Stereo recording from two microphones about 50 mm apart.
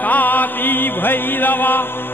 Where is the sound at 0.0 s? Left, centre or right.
Left.